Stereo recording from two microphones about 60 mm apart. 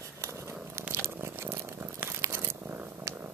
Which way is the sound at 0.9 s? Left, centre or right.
Right.